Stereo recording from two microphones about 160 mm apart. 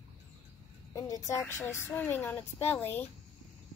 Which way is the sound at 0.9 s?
20° left (ahead or behind).